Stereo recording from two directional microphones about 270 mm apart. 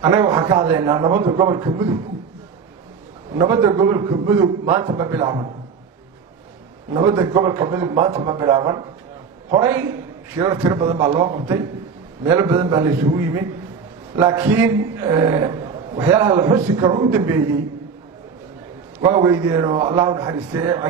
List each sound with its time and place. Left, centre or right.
0.0 s a man's voice: centre
3.3 s a man's voice: centre
6.9 s a man's voice: centre
18.9 s a man's voice: centre